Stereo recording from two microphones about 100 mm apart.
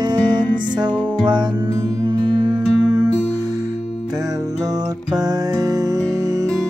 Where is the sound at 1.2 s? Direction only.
50° right (ahead or behind).